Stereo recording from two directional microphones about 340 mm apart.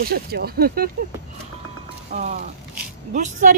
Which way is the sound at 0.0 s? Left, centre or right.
Right.